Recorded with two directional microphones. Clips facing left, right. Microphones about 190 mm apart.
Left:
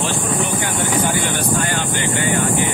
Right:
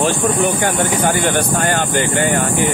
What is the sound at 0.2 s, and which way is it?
Speech, 50° right (ahead or behind).